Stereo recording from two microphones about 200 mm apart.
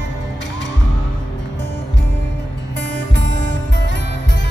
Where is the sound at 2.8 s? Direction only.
60° left (ahead or behind).